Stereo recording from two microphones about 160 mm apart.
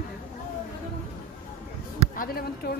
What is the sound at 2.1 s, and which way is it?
Speech, 65° left (ahead or behind).